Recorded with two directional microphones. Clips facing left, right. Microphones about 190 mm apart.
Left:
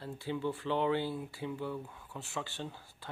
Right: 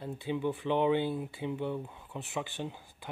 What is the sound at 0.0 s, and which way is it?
Speech, 20° right (ahead or behind).